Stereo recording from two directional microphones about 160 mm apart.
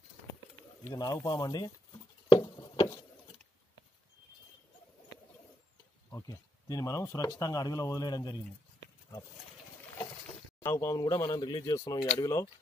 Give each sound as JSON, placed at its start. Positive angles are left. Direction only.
{"t": 0.8, "sound": "speech", "side_deg": 20}
{"t": 2.2, "sound": "a sound", "side_deg": 30}
{"t": 6.0, "sound": "speech", "side_deg": 20}
{"t": 10.6, "sound": "speech", "side_deg": 15}